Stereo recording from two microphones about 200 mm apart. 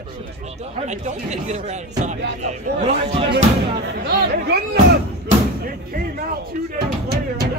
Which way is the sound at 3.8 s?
55° right (ahead or behind).